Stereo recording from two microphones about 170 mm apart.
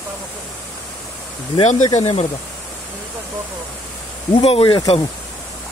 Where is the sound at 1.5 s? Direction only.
40° left (ahead or behind).